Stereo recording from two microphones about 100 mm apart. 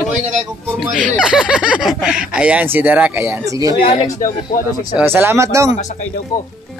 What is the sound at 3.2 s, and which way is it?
Speech, 25° right (ahead or behind).